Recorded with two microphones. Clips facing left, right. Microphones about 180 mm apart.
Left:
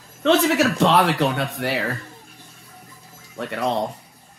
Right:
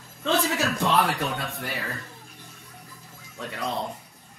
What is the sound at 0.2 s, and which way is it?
A man's voice, 75° left (ahead or behind).